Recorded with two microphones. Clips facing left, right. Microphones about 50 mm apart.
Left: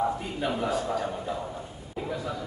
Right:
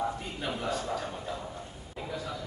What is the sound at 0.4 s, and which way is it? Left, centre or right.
Speech, centre.